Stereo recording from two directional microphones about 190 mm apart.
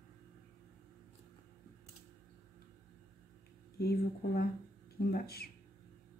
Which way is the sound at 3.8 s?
55° left (ahead or behind).